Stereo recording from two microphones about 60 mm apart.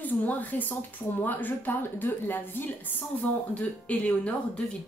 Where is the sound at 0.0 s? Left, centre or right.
Left.